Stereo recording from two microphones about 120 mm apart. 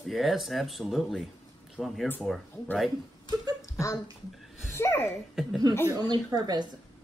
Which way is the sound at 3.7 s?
25° left (ahead or behind).